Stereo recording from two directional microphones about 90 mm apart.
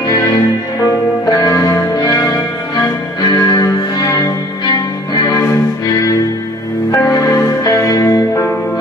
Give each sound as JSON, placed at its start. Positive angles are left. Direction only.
{"t": 0.1, "sound": "music", "side_deg": 40}
{"t": 1.4, "sound": "music", "side_deg": 35}